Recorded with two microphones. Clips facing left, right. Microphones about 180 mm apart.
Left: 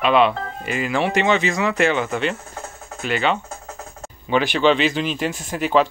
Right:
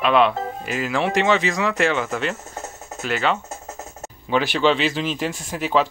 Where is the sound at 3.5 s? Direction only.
25° right (ahead or behind).